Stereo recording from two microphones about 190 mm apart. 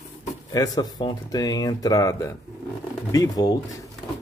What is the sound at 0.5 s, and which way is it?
Speech, 20° left (ahead or behind).